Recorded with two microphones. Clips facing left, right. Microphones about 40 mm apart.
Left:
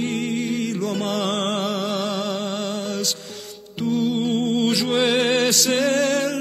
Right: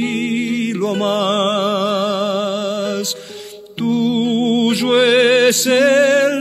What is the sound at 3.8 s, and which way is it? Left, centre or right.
Music, right.